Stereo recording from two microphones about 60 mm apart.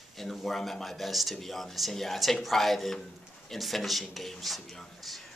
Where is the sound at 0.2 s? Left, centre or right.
Centre.